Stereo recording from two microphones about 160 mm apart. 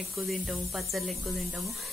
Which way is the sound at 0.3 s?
Centre (ahead or behind).